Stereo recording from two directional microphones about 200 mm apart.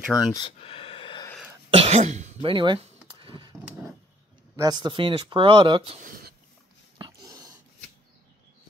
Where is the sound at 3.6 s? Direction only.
10° right (ahead or behind).